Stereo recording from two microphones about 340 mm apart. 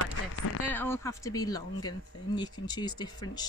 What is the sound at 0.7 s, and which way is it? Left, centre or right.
Speech, centre.